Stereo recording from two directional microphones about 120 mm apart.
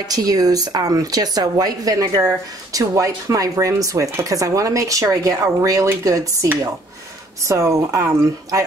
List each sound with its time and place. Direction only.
0.1 s speech: 30° right (ahead or behind)